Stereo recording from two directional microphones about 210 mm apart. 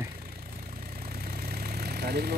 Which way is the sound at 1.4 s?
45° right (ahead or behind).